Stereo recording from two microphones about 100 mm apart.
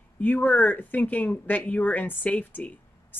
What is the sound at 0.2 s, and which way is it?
Speech, 15° left (ahead or behind).